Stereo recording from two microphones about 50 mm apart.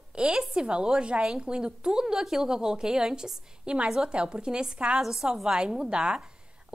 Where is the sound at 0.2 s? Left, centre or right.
Centre.